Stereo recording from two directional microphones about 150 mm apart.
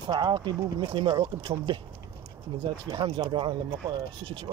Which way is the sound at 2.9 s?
35° right (ahead or behind).